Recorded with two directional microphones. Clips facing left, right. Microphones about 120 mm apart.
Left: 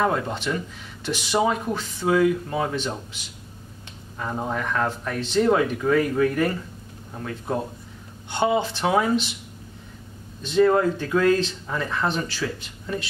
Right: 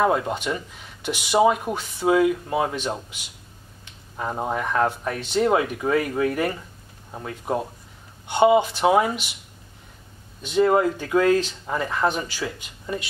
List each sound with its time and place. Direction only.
0.0 s speech: 15° right (ahead or behind)
10.4 s speech: 15° right (ahead or behind)